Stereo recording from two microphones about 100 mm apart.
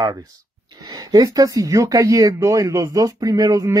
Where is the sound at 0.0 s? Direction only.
40° right (ahead or behind).